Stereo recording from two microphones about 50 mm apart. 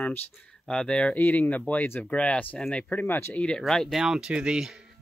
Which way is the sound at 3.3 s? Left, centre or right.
Left.